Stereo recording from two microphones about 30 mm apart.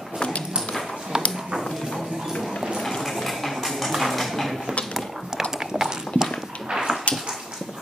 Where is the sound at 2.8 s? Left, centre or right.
Centre.